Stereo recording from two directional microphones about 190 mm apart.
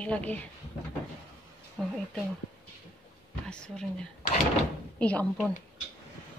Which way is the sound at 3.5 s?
5° left (ahead or behind).